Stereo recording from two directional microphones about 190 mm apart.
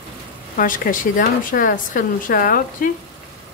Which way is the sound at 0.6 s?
45° left (ahead or behind).